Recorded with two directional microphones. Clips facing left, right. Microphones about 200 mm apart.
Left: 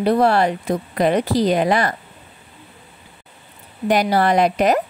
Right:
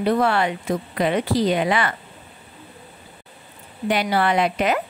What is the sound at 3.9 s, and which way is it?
Speech, 40° left (ahead or behind).